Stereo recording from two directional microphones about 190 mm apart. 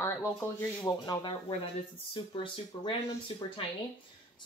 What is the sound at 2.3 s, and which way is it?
Speech, 25° left (ahead or behind).